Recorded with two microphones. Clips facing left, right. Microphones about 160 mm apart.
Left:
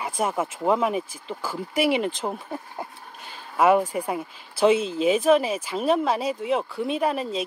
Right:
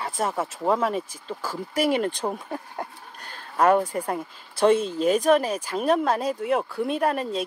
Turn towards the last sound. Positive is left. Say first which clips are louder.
# even
turn(degrees=0)  # may be behind; listen again after turning